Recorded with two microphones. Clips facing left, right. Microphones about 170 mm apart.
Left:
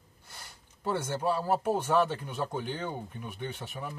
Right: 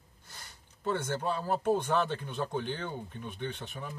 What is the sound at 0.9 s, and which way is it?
Speech, 10° left (ahead or behind).